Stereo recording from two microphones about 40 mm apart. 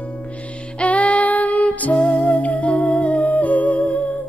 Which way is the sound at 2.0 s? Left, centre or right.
Left.